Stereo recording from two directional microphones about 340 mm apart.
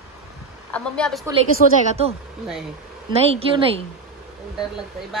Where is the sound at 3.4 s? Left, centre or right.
Centre.